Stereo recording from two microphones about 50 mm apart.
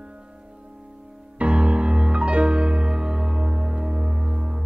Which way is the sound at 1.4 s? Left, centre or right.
Right.